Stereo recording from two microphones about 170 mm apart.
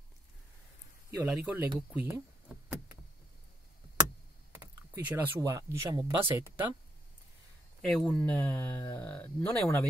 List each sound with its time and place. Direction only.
1.2 s speech: 5° right (ahead or behind)
2.0 s a sound: 10° right (ahead or behind)
4.0 s computer keyboard: 15° right (ahead or behind)
6.2 s speech: 15° right (ahead or behind)
7.8 s speech: 5° left (ahead or behind)